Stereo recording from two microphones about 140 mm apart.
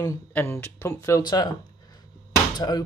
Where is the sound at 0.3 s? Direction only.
15° left (ahead or behind).